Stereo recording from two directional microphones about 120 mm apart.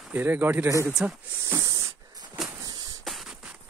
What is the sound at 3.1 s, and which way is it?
Music, centre (ahead or behind).